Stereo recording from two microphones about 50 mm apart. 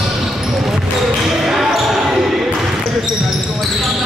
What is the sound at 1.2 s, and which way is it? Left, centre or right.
Basketball bounce, centre.